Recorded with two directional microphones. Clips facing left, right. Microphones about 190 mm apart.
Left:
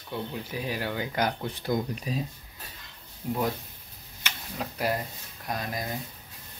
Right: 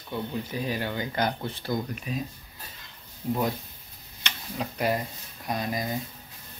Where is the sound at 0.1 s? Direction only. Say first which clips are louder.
Right 2 dB; 5° left (ahead or behind).